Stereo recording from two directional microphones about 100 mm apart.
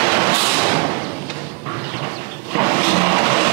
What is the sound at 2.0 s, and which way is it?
Vehicle, 25° right (ahead or behind).